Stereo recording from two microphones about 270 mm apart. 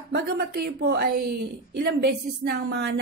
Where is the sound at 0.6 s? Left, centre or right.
Right.